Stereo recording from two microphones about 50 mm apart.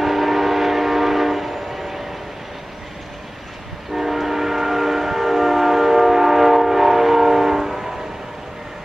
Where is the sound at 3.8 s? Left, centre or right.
Centre.